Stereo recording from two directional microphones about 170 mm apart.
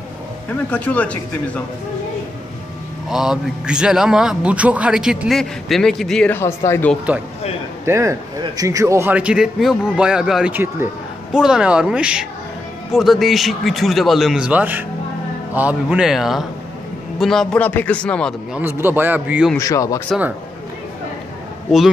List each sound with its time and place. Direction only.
0.7 s speech: 10° left (ahead or behind)
3.1 s a man's voice: 5° right (ahead or behind); by 6.9 s 15° left (ahead or behind)
7.1 s a man's voice: 10° right (ahead or behind)
18.6 s a man's voice: 15° right (ahead or behind)
19.5 s speech: 20° left (ahead or behind)